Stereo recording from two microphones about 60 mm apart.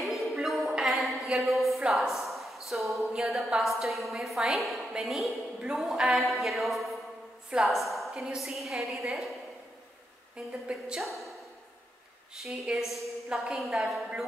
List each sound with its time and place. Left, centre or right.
0.0 s a sound: centre
2.7 s a woman's voice: centre
10.3 s a woman's voice: centre
11.0 s a woman's voice: centre
12.6 s a woman's voice: centre